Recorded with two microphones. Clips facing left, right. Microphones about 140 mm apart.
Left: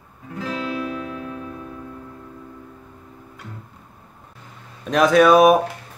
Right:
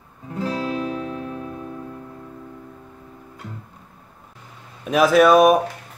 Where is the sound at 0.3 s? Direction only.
35° right (ahead or behind).